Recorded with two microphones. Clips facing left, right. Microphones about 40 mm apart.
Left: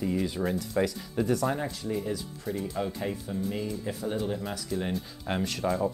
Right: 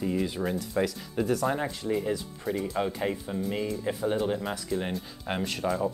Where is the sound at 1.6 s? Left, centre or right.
Right.